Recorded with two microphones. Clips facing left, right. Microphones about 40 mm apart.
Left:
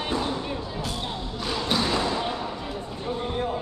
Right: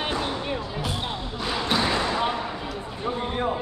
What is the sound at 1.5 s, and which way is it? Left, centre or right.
Basketball bounce, centre.